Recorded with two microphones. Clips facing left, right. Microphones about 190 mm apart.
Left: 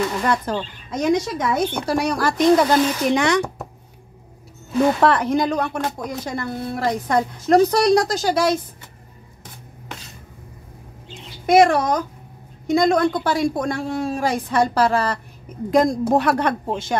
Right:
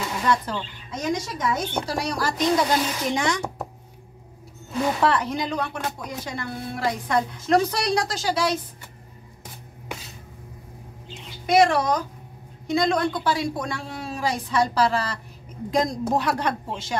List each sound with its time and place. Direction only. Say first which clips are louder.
0.2 s a woman's voice: left 3 dB; 50° left (ahead or behind)
3.1 s speech: left 5 dB; 65° left (ahead or behind)
5.0 s speech: left 5 dB; 55° left (ahead or behind)
11.4 s a woman's voice: left 4 dB; 50° left (ahead or behind)